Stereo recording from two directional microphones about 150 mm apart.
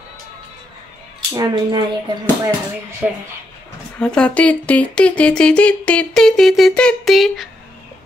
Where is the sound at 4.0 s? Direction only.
5° left (ahead or behind).